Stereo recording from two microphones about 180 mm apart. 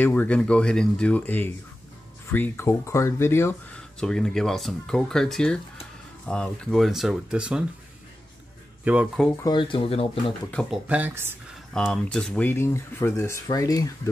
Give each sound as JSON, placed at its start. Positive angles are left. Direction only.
{"t": 0.0, "sound": "speech", "side_deg": 10}
{"t": 8.8, "sound": "speech", "side_deg": -10}
{"t": 9.4, "sound": "speech", "side_deg": 25}
{"t": 10.5, "sound": "speech", "side_deg": 5}
{"t": 10.9, "sound": "speech", "side_deg": -10}
{"t": 11.7, "sound": "speech", "side_deg": 5}